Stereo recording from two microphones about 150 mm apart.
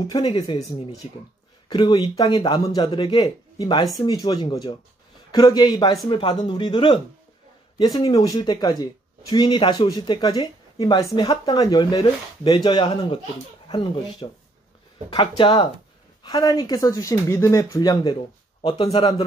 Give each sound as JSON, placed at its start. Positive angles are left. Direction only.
{"t": 0.1, "sound": "speech", "side_deg": 30}
{"t": 1.7, "sound": "a man's voice", "side_deg": 30}